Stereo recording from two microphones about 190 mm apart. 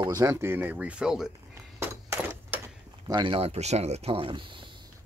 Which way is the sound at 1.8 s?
10° right (ahead or behind).